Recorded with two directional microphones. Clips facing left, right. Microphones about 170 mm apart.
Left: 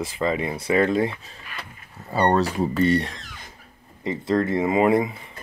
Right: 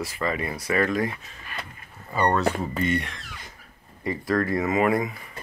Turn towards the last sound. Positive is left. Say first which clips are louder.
# left 3 dB
turn(degrees=25)  # may be behind; listen again after turning